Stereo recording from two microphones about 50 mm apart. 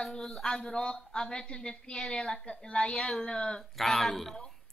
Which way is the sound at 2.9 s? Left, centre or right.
Centre.